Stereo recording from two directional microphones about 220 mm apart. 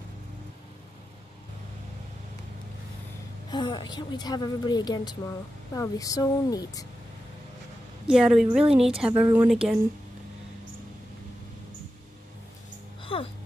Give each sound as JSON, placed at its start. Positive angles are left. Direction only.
{"t": 3.4, "sound": "a woman's voice", "side_deg": 20}
{"t": 8.1, "sound": "a woman's voice", "side_deg": 0}
{"t": 13.0, "sound": "music", "side_deg": 25}